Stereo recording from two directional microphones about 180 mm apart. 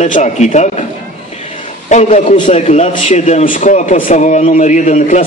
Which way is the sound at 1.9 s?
40° left (ahead or behind).